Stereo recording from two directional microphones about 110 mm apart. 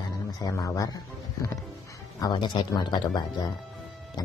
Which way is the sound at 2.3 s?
40° left (ahead or behind).